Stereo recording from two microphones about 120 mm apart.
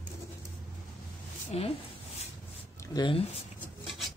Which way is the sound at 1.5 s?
60° left (ahead or behind).